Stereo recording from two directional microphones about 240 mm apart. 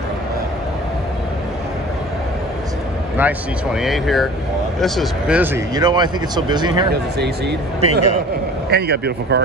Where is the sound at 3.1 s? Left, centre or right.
Centre.